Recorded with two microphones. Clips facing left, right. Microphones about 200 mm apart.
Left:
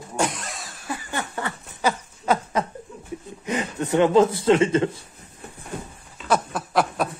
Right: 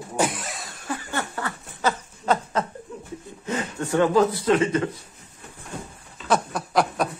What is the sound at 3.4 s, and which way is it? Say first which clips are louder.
Speech: left 2 dB; 15° left (ahead or behind).